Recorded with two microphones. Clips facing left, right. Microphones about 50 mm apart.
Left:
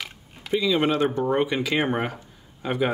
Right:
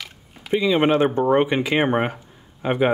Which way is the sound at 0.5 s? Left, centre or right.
Right.